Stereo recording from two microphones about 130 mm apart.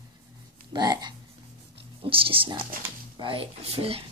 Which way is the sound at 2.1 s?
45° right (ahead or behind).